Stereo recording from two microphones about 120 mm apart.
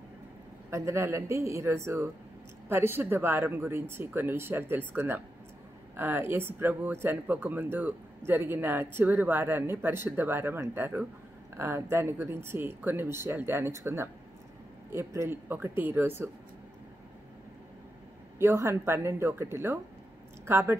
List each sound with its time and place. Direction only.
0.7 s speech: 25° right (ahead or behind)
18.4 s speech: 20° right (ahead or behind)